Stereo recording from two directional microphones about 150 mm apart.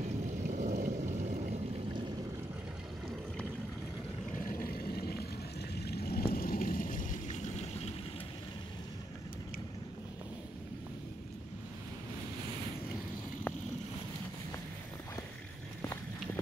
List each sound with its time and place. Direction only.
0.5 s vehicle: 55° right (ahead or behind)
4.6 s vehicle: 90° left
5.9 s a sound: 90° left; by 7.6 s 60° left (ahead or behind)